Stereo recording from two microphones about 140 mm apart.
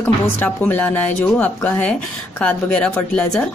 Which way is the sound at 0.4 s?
10° left (ahead or behind).